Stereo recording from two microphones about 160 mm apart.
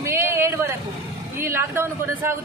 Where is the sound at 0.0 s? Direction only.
20° right (ahead or behind).